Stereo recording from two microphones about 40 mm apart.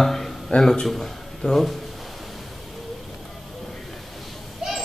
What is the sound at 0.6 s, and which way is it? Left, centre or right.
A man's voice, centre.